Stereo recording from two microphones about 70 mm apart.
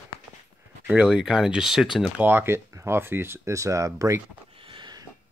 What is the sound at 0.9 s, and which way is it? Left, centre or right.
Speech, centre.